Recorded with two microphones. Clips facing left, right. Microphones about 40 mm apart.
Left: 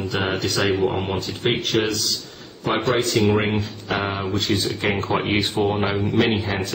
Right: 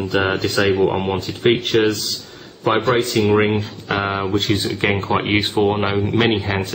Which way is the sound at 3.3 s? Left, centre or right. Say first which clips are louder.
Right 5 dB; centre.